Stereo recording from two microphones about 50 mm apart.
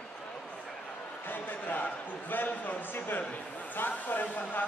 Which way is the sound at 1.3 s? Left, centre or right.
Left.